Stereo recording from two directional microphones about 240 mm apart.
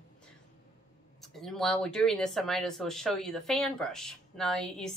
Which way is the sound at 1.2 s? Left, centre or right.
Centre.